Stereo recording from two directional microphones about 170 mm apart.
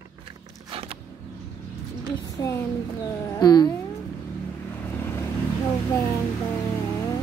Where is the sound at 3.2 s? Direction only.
25° left (ahead or behind).